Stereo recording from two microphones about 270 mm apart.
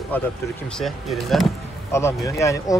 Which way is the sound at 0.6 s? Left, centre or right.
Centre.